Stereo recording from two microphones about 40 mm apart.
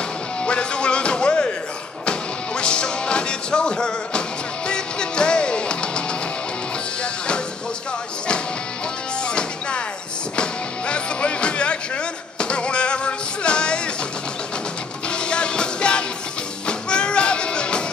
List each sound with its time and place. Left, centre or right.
0.5 s music: left
9.3 s music: left
15.0 s music: left